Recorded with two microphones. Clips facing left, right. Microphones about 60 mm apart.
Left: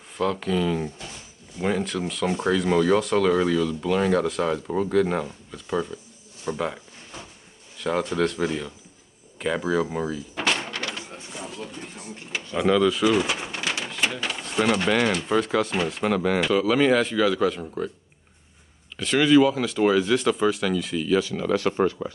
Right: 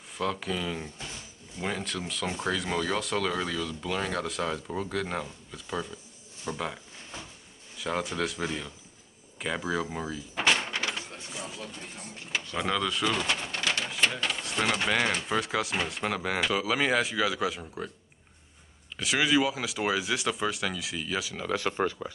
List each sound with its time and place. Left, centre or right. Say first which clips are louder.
0.2 s speech: left 7 dB; centre
7.7 s speech: left 6 dB; centre
10.1 s door: left 1 dB; centre
10.7 s a sound: left 1 dB; centre
11.2 s a sound: left 4 dB; centre
12.5 s bird: left 10 dB; centre
13.8 s speech: left 1 dB; centre
18.9 s speech: left 8 dB; centre